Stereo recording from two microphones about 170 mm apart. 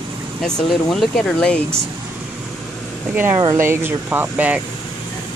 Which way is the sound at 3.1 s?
10° right (ahead or behind).